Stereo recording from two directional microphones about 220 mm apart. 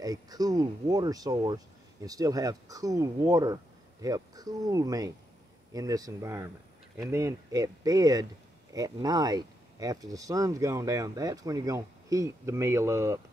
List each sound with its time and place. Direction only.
0.0 s speech: 15° right (ahead or behind)